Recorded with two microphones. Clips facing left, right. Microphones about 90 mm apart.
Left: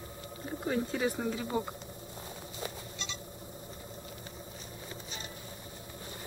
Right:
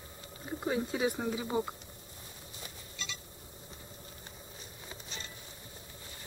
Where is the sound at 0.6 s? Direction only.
5° right (ahead or behind).